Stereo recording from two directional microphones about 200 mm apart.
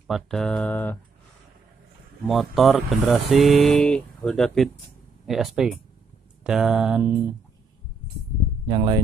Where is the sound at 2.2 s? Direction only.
Centre (ahead or behind).